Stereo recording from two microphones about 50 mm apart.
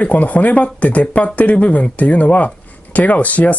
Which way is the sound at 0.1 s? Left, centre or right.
Left.